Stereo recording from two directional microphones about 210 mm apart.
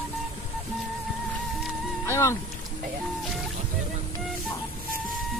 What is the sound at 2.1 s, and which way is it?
Speech, 15° left (ahead or behind).